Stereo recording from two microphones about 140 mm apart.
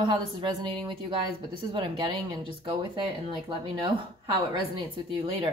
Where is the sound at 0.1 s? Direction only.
35° right (ahead or behind).